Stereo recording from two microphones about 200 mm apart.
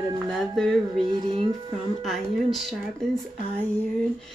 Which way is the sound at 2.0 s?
Centre (ahead or behind).